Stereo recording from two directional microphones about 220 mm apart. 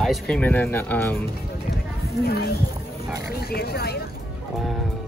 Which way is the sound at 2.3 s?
45° left (ahead or behind).